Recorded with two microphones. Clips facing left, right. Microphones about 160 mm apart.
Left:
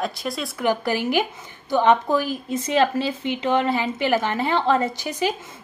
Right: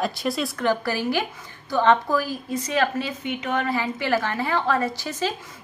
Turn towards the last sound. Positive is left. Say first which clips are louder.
# left 2 dB
turn(degrees=15)  # may be behind; listen again after turning